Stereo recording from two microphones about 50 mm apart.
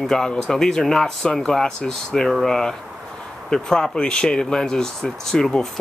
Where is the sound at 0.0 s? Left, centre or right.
Centre.